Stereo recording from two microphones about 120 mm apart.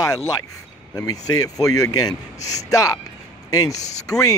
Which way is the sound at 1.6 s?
30° left (ahead or behind).